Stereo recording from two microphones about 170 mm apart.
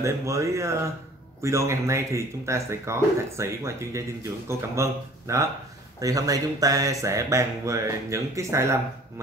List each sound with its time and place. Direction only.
0.0 s speech: 15° right (ahead or behind)